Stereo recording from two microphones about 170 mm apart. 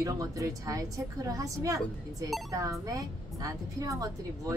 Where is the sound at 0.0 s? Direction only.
20° right (ahead or behind).